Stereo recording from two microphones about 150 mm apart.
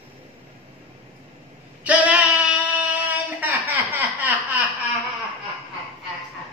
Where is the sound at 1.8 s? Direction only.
10° right (ahead or behind).